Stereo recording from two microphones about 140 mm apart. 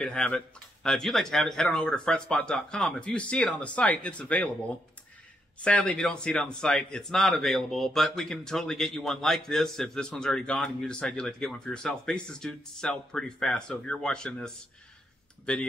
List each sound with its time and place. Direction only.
0.0 s speech: 5° left (ahead or behind)
5.6 s speech: 10° left (ahead or behind)